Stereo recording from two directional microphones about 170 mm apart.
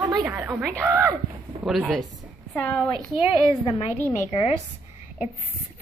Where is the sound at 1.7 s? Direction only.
Centre (ahead or behind).